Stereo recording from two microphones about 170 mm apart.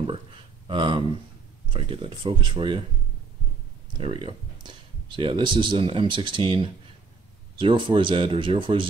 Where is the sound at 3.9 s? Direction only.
30° right (ahead or behind).